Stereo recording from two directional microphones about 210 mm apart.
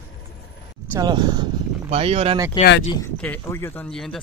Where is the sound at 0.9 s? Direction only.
20° right (ahead or behind).